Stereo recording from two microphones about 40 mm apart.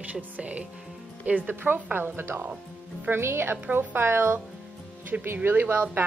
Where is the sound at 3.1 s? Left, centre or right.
Right.